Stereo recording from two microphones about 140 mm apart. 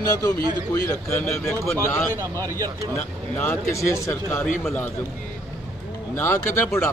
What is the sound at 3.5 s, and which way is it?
Speech, 20° left (ahead or behind).